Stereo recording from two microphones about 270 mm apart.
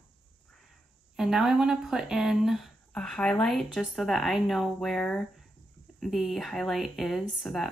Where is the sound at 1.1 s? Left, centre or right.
Centre.